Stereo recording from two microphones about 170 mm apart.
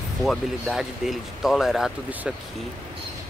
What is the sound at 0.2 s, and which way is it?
Speech, centre (ahead or behind).